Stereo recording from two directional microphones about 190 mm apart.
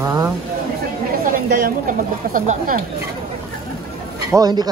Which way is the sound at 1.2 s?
45° right (ahead or behind).